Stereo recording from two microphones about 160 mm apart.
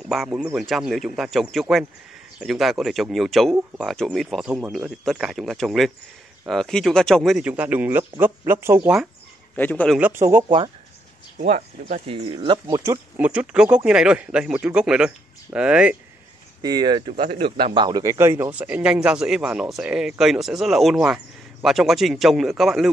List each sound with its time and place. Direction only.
0.1 s a man's voice: centre (ahead or behind)
9.6 s a man's voice: 10° left (ahead or behind)
9.9 s a man's voice: 10° right (ahead or behind)
11.3 s speech: 50° right (ahead or behind)
12.3 s speech: 35° right (ahead or behind)
13.2 s a man's voice: 10° right (ahead or behind)
16.6 s speech: 25° right (ahead or behind); by 22.8 s centre (ahead or behind)